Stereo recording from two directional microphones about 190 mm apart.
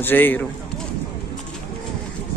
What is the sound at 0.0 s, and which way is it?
Speech, 10° left (ahead or behind).